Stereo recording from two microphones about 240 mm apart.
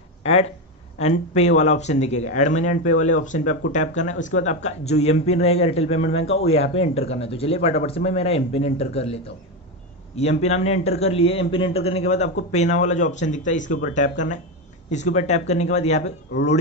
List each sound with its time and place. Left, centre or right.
0.2 s a man's voice: left